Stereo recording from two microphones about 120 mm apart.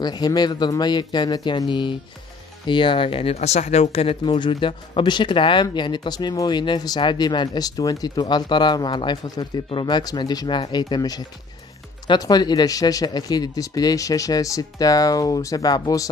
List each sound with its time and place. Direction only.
0.0 s speech: 35° left (ahead or behind)
3.3 s speech: 70° left (ahead or behind); by 16.1 s 30° left (ahead or behind)